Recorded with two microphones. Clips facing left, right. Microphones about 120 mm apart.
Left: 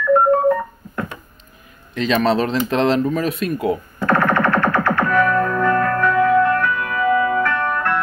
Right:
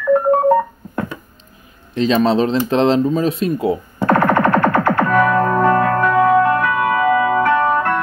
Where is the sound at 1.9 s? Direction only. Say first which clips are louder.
Right 3 dB; 30° right (ahead or behind).